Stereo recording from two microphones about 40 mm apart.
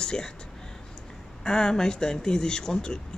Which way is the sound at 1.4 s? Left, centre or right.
Centre.